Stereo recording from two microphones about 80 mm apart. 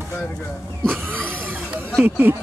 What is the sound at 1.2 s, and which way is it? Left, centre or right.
Vehicle, right.